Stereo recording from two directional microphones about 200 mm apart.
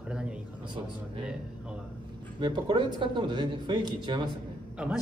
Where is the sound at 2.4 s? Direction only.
25° right (ahead or behind).